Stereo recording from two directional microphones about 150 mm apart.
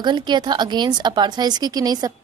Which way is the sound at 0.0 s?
30° right (ahead or behind).